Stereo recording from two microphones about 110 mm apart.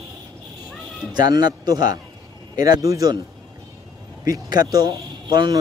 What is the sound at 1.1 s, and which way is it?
Speech, 40° right (ahead or behind).